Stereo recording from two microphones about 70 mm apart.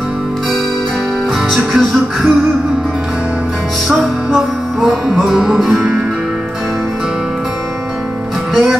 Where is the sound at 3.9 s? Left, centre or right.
Centre.